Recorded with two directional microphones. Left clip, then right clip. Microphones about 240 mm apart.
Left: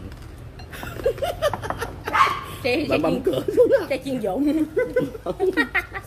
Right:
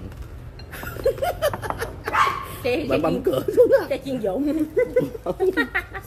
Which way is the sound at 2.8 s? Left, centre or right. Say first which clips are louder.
Even; centre.